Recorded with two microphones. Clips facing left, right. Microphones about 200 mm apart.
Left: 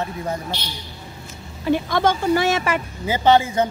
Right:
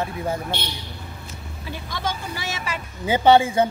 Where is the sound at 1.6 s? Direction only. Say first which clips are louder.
Left 12 dB; 60° left (ahead or behind).